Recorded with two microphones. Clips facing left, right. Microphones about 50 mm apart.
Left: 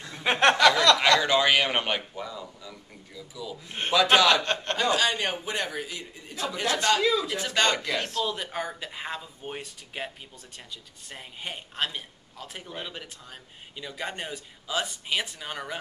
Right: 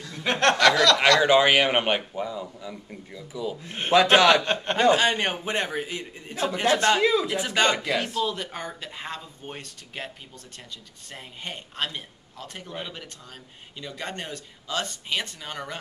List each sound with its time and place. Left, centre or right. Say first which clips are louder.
0.0 s a sound: left 1 dB; centre
1.2 s a man's voice: right 4 dB; right
4.3 s speech: right 3 dB; centre
4.7 s a man's voice: right 6 dB; right; by 15.8 s centre